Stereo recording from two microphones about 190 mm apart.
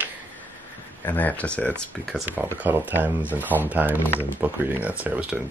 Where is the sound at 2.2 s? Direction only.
10° right (ahead or behind).